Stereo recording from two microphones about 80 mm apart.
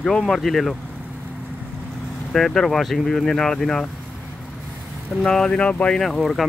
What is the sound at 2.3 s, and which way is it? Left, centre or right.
Speech, centre.